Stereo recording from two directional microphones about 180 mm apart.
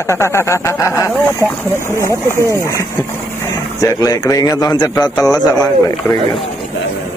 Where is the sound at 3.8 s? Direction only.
20° left (ahead or behind).